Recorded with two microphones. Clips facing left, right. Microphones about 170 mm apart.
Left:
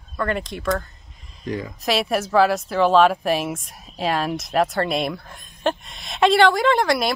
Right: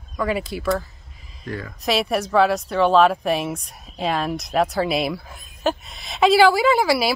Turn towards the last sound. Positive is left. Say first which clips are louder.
# right 1 dB
turn(degrees=-5)  # may be behind; listen again after turning